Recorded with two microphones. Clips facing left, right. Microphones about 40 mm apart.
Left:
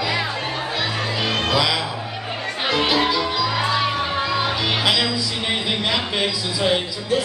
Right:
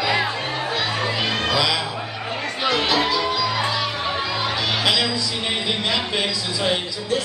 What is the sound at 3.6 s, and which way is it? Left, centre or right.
Music, left.